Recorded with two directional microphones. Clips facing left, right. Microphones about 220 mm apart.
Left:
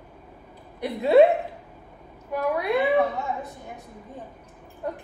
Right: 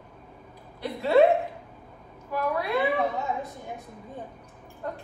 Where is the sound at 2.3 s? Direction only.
20° left (ahead or behind).